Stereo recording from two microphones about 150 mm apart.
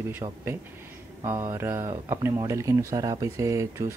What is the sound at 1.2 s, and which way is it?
Speech, 20° right (ahead or behind).